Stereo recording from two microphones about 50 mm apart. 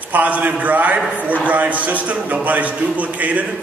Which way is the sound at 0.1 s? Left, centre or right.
Right.